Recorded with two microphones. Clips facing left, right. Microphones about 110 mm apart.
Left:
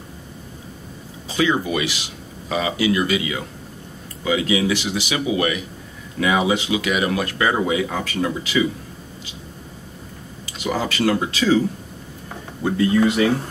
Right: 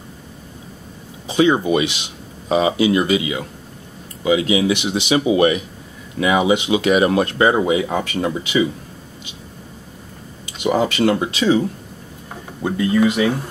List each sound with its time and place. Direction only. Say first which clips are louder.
1.3 s speech: right 5 dB; 25° right (ahead or behind)
10.6 s speech: right 4 dB; 25° right (ahead or behind)
12.6 s speech: right 1 dB; 20° right (ahead or behind)